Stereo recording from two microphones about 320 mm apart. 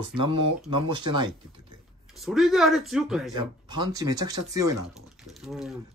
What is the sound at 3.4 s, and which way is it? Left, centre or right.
Speech, centre.